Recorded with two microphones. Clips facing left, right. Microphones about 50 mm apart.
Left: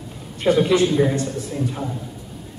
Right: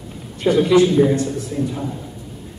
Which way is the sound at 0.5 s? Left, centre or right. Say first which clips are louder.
Right 1 dB; centre.